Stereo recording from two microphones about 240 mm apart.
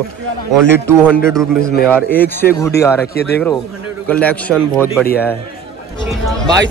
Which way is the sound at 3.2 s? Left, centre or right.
Left.